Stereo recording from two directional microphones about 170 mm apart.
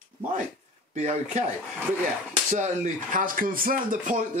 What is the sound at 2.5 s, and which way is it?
Speech, 50° right (ahead or behind).